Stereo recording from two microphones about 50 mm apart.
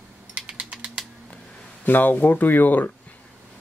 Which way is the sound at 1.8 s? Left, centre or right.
Left.